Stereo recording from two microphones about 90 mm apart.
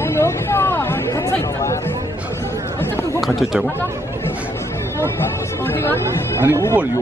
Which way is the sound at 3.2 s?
Centre (ahead or behind).